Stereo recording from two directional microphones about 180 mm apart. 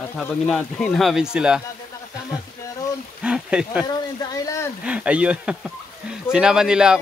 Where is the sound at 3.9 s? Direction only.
20° left (ahead or behind).